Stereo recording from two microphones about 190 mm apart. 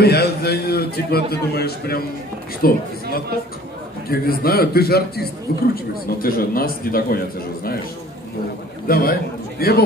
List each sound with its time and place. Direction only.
0.0 s a man's voice: 60° left (ahead or behind)
4.1 s a man's voice: 55° left (ahead or behind)
6.2 s a man's voice: 50° left (ahead or behind)
8.8 s a man's voice: 50° left (ahead or behind)